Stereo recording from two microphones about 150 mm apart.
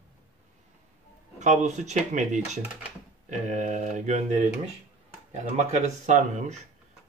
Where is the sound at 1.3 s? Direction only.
50° right (ahead or behind).